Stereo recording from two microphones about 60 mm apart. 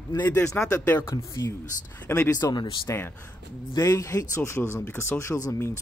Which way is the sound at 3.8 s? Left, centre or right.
Left.